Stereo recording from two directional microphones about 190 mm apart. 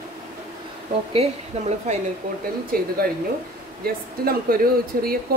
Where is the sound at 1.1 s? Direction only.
35° right (ahead or behind).